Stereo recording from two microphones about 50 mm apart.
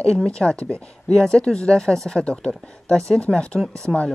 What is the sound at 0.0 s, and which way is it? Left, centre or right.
Speech, centre.